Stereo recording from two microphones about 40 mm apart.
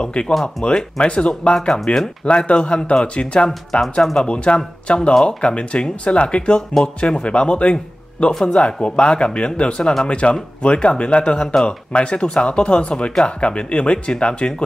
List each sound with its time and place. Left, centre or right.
0.0 s speech: left
1.5 s speech: centre
2.2 s speech: left